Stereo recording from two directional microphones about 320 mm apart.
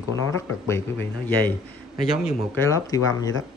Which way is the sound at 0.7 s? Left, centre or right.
Centre.